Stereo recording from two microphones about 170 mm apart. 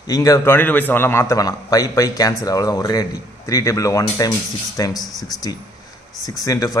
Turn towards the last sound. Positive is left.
turn(degrees=20)  # may be behind; listen again after turning